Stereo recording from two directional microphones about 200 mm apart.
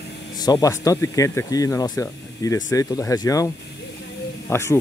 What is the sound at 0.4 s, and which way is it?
Speech, 20° left (ahead or behind).